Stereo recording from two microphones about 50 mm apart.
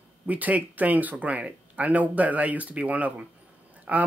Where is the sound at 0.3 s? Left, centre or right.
Right.